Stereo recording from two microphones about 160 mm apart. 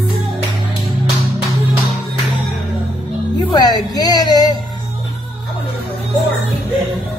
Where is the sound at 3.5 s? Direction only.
25° left (ahead or behind).